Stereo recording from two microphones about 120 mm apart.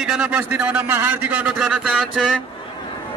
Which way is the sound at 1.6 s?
5° right (ahead or behind).